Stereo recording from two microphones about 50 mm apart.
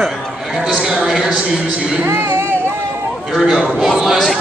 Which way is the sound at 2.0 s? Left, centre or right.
Right.